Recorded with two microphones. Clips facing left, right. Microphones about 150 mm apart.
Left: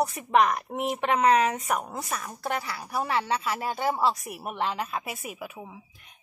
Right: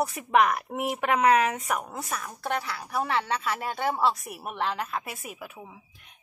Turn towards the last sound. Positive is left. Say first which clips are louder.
# left 2 dB
turn(degrees=5)  # may be behind; listen again after turning